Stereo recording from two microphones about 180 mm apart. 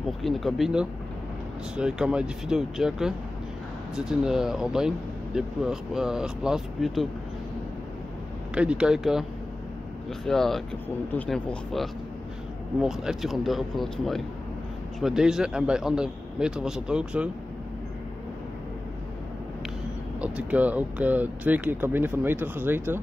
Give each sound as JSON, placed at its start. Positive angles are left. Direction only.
{"t": 0.2, "sound": "speech", "side_deg": 0}
{"t": 8.5, "sound": "speech", "side_deg": -5}
{"t": 10.2, "sound": "speech", "side_deg": 0}
{"t": 20.2, "sound": "speech", "side_deg": -5}